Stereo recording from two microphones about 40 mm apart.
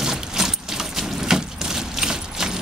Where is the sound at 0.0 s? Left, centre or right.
Centre.